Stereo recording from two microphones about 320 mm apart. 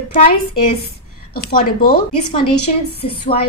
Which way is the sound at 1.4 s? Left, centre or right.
Left.